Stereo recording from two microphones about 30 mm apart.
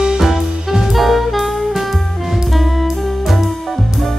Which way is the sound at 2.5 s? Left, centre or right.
Centre.